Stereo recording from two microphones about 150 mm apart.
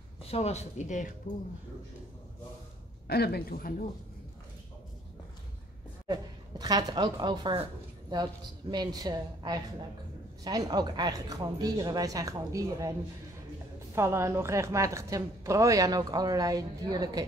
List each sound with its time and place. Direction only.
0.3 s speech: 45° left (ahead or behind)
3.1 s speech: 90° left
6.6 s a woman's voice: 25° right (ahead or behind)
13.9 s a woman's voice: 20° right (ahead or behind)